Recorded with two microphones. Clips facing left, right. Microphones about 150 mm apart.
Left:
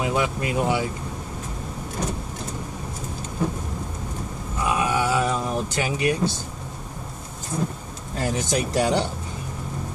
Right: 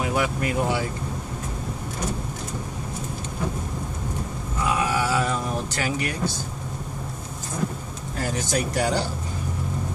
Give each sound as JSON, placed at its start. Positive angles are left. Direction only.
{"t": 0.0, "sound": "speech", "side_deg": 20}
{"t": 4.6, "sound": "a sound", "side_deg": 20}
{"t": 8.4, "sound": "speech", "side_deg": 20}